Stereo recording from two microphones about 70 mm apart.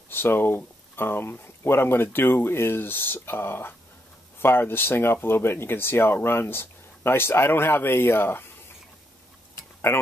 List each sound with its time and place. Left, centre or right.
0.1 s speech: left